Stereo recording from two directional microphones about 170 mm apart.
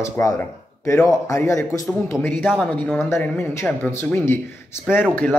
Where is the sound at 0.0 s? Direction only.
15° left (ahead or behind).